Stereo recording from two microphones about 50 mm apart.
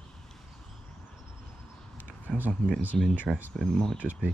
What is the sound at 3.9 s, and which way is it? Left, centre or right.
Speech, right.